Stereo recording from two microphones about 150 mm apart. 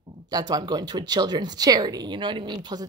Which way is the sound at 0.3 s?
25° right (ahead or behind).